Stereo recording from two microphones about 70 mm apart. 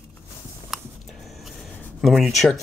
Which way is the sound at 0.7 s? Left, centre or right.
Centre.